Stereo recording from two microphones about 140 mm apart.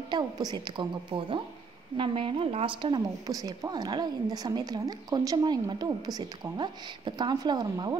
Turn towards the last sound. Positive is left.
turn(degrees=-30)  # may be behind; listen again after turning